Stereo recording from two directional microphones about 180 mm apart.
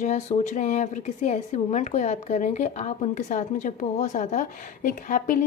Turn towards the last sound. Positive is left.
turn(degrees=45)  # may be behind; listen again after turning